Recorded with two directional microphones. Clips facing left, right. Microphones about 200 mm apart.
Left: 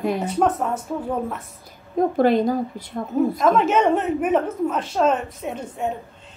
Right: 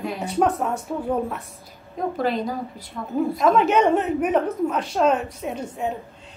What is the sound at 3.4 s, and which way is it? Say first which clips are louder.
A woman's voice: right 2 dB; centre (ahead or behind).